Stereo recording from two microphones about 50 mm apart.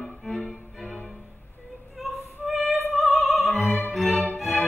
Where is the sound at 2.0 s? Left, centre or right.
Centre.